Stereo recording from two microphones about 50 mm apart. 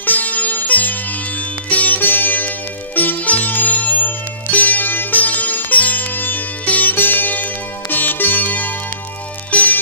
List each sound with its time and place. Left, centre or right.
0.0 s sitar: left
7.9 s music: left